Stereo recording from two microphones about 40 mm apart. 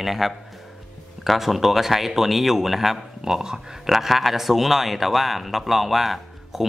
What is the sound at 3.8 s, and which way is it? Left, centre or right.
Speech, centre.